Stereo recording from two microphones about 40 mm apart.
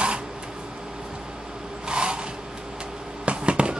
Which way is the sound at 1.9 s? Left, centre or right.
Right.